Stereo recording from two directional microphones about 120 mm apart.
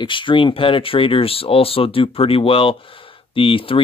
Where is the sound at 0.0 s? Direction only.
45° left (ahead or behind).